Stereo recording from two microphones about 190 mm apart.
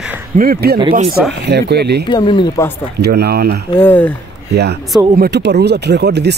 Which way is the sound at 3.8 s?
10° left (ahead or behind).